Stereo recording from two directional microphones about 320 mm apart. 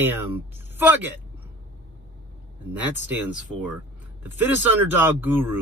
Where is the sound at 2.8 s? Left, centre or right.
Centre.